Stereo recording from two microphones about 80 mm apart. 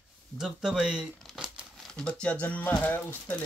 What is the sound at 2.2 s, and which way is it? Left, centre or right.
Speech, centre.